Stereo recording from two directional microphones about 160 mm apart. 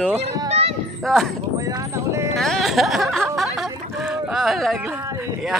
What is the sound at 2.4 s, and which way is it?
Speech, centre (ahead or behind).